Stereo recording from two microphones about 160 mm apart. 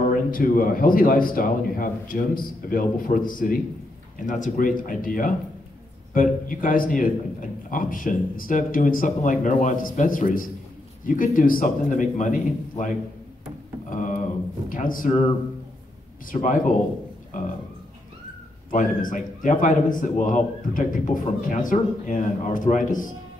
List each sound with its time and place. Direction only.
0.1 s a man's voice: 60° left (ahead or behind)
13.8 s a sound: 50° left (ahead or behind)
14.7 s speech: 55° left (ahead or behind)
16.3 s a man's voice: 55° left (ahead or behind)
18.7 s a man's voice: 55° left (ahead or behind)